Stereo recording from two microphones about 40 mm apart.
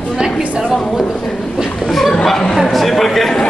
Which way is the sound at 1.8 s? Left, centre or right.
Centre.